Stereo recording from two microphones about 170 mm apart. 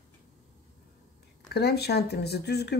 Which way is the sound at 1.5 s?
70° left (ahead or behind).